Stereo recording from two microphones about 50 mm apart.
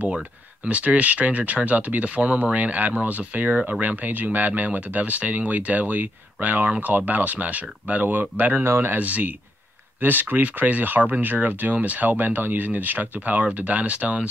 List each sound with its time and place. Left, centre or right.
0.7 s speech: right
8.6 s speech: right
9.0 s speech: right